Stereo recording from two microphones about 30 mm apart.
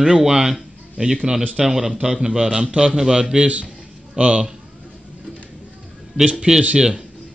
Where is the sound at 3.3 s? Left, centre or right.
Right.